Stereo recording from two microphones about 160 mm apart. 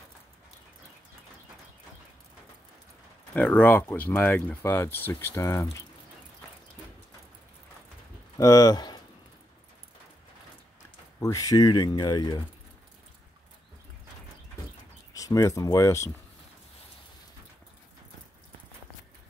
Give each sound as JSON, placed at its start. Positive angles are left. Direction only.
{"t": 3.3, "sound": "speech", "side_deg": 10}
{"t": 8.4, "sound": "speech", "side_deg": 20}
{"t": 11.1, "sound": "speech", "side_deg": 20}
{"t": 15.1, "sound": "speech", "side_deg": 20}